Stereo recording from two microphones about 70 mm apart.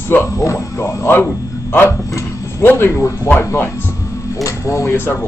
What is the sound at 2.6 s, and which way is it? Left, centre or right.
Speech, left.